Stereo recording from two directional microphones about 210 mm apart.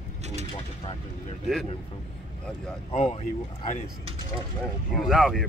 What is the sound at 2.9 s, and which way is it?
Speech, 30° left (ahead or behind).